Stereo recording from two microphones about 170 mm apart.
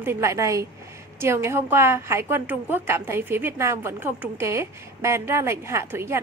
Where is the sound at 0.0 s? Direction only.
15° right (ahead or behind).